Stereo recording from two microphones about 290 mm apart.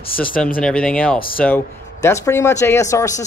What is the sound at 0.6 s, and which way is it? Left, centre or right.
Speech, centre.